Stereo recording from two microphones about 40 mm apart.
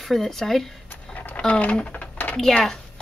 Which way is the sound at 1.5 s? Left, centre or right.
Left.